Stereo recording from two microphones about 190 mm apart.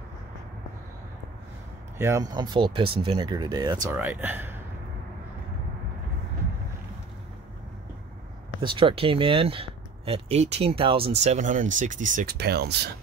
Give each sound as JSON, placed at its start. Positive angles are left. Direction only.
{"t": 2.0, "sound": "speech", "side_deg": -15}
{"t": 3.9, "sound": "speech", "side_deg": -10}
{"t": 8.5, "sound": "speech", "side_deg": -25}